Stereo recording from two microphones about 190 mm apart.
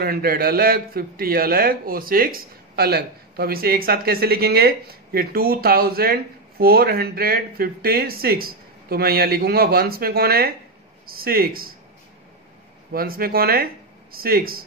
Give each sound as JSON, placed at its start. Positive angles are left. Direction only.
{"t": 0.0, "sound": "a man's voice", "side_deg": -50}
{"t": 12.9, "sound": "a man's voice", "side_deg": -50}